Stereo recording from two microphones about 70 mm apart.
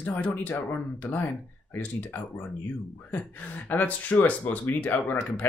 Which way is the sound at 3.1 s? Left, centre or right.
Left.